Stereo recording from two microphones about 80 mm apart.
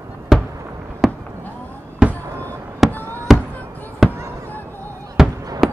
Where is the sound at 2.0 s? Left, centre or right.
Centre.